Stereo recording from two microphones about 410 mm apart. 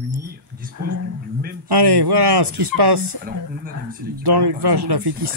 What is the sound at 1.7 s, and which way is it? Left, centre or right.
Speech, right.